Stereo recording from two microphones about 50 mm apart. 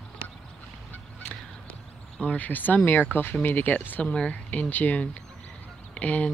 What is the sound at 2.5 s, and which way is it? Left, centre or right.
Speech, left.